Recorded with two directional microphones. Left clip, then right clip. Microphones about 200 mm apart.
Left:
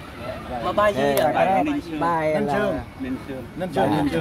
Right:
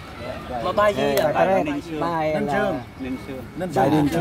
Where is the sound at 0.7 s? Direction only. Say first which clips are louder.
Right 1 dB; 5° right (ahead or behind).